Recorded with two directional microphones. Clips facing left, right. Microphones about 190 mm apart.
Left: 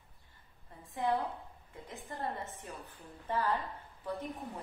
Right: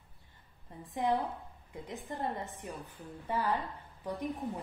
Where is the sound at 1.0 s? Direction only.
15° right (ahead or behind).